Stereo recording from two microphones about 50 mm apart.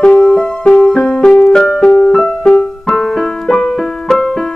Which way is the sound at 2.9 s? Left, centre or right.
Centre.